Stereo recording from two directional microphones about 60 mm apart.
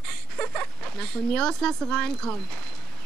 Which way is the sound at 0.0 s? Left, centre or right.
Centre.